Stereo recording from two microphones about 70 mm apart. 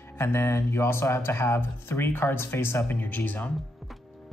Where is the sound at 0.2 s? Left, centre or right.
Left.